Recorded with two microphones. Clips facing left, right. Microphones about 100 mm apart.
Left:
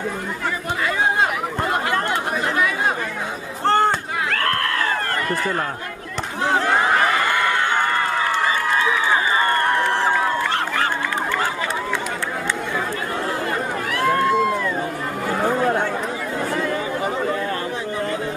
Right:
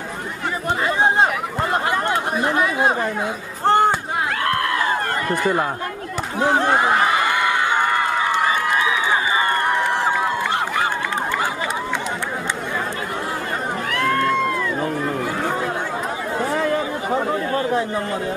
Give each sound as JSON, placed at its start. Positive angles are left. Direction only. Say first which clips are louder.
{"t": 1.9, "sound": "chatter", "louder": "right 1 dB", "side_deg": -25}
{"t": 3.6, "sound": "run", "louder": "right 2 dB", "side_deg": -15}
{"t": 6.4, "sound": "a sound", "louder": "right 2 dB", "side_deg": -20}
{"t": 9.4, "sound": "crowd", "louder": "left 1 dB", "side_deg": -15}
{"t": 13.9, "sound": "run", "louder": "left 2 dB", "side_deg": 5}